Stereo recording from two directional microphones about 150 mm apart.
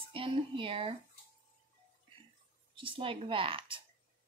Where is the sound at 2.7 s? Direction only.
35° right (ahead or behind).